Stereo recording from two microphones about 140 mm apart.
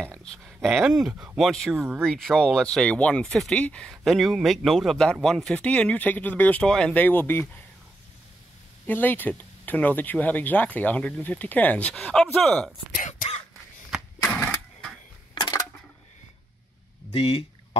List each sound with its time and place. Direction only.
0.0 s speech: 5° left (ahead or behind)
8.8 s speech: 15° left (ahead or behind)
12.9 s throat clearing: 65° left (ahead or behind)
15.3 s a sound: 30° left (ahead or behind)
17.1 s speech: 50° left (ahead or behind)